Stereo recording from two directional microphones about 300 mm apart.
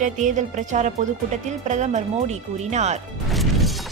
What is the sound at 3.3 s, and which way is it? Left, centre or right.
Music, centre.